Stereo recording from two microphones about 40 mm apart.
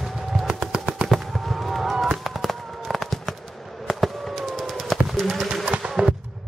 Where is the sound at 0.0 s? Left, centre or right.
Centre.